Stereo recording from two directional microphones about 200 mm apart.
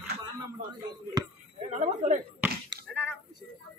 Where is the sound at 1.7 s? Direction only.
35° right (ahead or behind).